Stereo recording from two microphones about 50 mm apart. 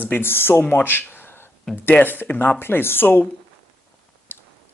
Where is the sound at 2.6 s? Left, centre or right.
Left.